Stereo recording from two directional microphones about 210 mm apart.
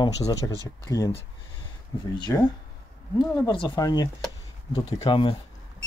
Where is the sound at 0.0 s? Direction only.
20° left (ahead or behind).